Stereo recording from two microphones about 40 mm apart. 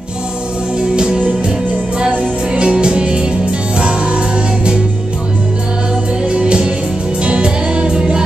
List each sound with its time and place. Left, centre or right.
0.9 s music: right
6.2 s music: right